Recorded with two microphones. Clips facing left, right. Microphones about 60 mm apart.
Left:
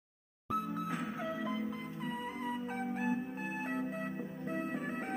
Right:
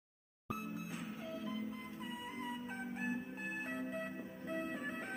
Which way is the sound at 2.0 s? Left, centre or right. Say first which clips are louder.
Left 6 dB; left.